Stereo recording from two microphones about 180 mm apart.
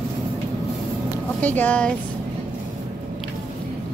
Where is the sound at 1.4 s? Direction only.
10° left (ahead or behind).